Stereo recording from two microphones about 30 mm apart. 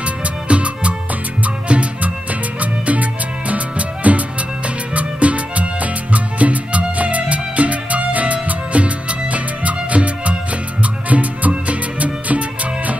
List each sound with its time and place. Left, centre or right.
0.0 s music: right